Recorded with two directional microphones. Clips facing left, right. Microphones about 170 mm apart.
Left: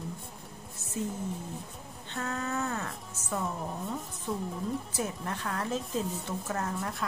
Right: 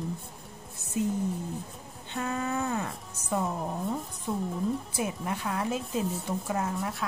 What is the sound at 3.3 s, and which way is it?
Speech, 25° right (ahead or behind).